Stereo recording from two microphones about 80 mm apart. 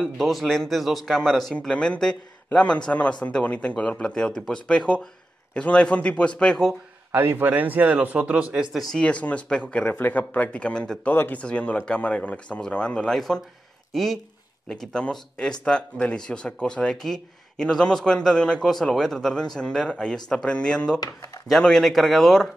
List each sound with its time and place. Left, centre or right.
0.2 s speech: centre
7.1 s a man's voice: right
8.9 s speech: centre
9.8 s speech: left
21.0 s speech: left
21.5 s speech: centre